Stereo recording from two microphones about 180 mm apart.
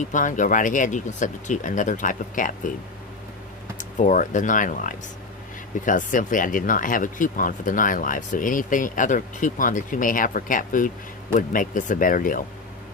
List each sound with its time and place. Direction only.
0.1 s speech: 45° left (ahead or behind)
3.7 s speech: 45° left (ahead or behind)